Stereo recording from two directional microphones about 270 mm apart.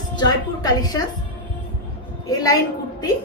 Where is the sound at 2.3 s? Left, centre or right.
Centre.